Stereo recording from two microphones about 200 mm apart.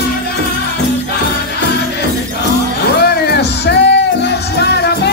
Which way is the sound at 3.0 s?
55° left (ahead or behind).